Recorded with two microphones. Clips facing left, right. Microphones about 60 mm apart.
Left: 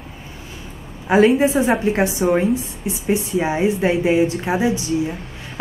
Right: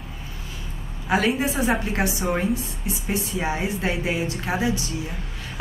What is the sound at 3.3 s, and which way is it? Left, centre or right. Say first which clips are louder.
A woman's voice: left 8 dB; centre.